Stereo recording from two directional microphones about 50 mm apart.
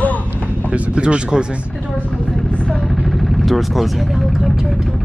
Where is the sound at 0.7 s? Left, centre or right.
Right.